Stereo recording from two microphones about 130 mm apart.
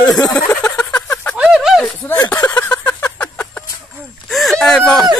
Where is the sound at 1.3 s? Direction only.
5° right (ahead or behind).